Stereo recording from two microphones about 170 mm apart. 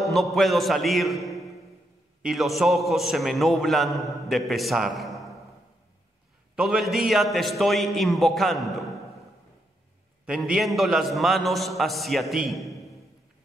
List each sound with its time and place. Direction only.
0.0 s a man's voice: centre (ahead or behind)
6.5 s a man's voice: centre (ahead or behind)
10.2 s a man's voice: 5° right (ahead or behind)